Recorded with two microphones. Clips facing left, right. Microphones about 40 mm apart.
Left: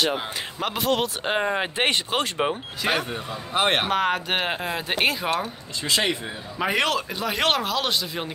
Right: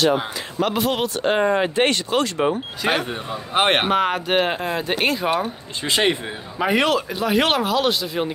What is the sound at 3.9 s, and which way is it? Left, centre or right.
Speech, centre.